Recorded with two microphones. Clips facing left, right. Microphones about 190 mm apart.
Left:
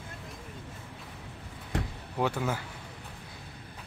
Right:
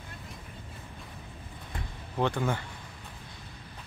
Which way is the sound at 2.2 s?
5° left (ahead or behind).